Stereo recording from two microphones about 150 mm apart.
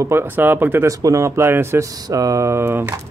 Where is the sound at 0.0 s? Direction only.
15° right (ahead or behind).